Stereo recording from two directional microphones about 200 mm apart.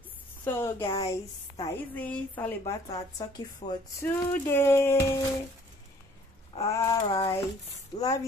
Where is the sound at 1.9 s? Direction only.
5° left (ahead or behind).